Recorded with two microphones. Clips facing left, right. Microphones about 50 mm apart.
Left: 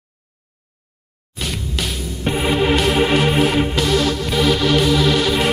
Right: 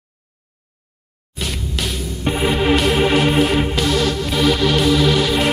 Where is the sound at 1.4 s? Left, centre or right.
Centre.